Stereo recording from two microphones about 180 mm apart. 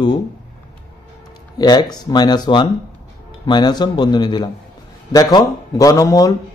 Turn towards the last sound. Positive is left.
turn(degrees=20)  # may be behind; listen again after turning